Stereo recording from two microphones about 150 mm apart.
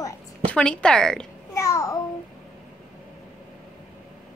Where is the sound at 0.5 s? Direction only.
10° left (ahead or behind).